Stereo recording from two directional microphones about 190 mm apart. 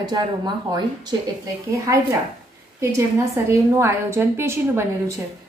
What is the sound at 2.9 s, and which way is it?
A woman's voice, 15° right (ahead or behind).